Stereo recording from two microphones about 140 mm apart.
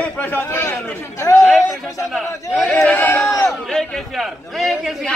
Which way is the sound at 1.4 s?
Centre (ahead or behind).